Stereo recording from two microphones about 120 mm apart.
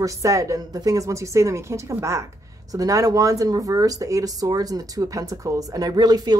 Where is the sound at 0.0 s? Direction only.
25° right (ahead or behind).